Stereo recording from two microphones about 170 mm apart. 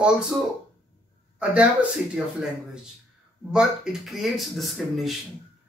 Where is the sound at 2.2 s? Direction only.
5° right (ahead or behind).